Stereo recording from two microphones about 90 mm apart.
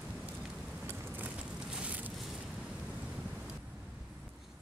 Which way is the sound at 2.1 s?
5° right (ahead or behind).